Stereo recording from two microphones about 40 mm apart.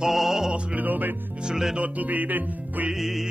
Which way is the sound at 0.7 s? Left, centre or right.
Right.